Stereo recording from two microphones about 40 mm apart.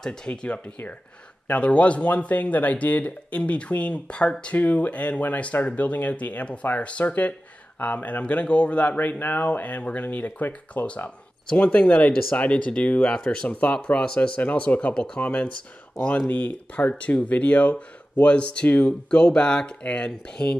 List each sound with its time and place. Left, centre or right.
0.0 s speech: centre
0.3 s speech: left
4.6 s speech: left
13.0 s speech: left
14.3 s speech: left
16.3 s speech: left
17.0 s speech: left